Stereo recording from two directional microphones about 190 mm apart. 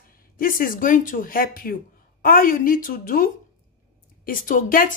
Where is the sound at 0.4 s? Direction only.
50° left (ahead or behind).